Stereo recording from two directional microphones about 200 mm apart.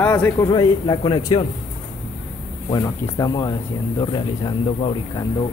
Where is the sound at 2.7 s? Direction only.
20° left (ahead or behind).